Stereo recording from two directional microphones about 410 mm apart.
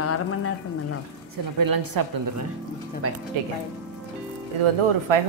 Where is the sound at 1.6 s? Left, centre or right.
Right.